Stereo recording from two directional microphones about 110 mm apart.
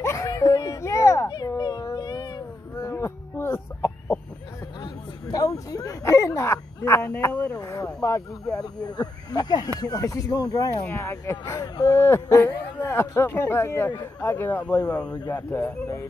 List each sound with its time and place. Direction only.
0.0 s a sound: 25° left (ahead or behind)
1.6 s cat: 35° left (ahead or behind)
2.8 s chicken: 25° left (ahead or behind)
4.7 s a sound: 35° left (ahead or behind)
7.5 s speech: 30° left (ahead or behind)
10.9 s speech: 20° left (ahead or behind)
14.9 s speech: 10° left (ahead or behind)